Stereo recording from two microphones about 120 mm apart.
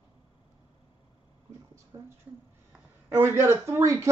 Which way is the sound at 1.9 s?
35° right (ahead or behind).